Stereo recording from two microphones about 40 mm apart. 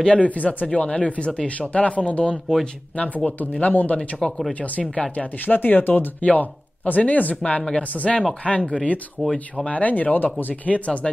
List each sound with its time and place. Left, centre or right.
0.0 s speech: left
3.6 s speech: left
4.2 s speech: centre
4.6 s speech: left
5.1 s speech: left
9.2 s speech: centre
9.7 s speech: left
10.7 s speech: left